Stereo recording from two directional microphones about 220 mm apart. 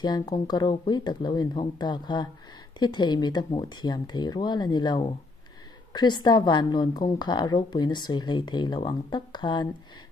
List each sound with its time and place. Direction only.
0.0 s a woman's voice: 20° left (ahead or behind)